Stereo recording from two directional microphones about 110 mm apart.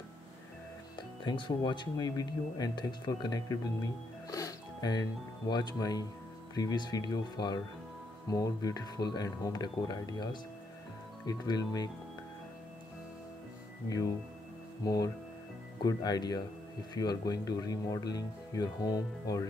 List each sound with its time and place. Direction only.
0.9 s speech: 45° left (ahead or behind)
13.8 s speech: 30° left (ahead or behind)